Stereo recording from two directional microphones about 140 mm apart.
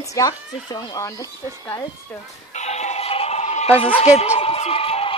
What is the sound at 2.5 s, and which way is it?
Music, 55° left (ahead or behind).